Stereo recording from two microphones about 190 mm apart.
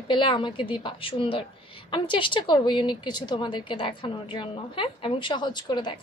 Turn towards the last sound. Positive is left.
turn(degrees=25)  # may be behind; listen again after turning